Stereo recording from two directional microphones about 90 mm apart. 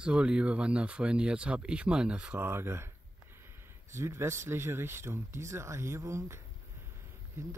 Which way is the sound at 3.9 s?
30° right (ahead or behind).